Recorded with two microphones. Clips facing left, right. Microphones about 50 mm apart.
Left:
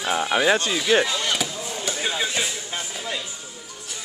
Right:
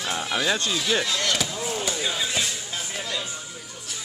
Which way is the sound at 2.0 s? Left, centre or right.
Left.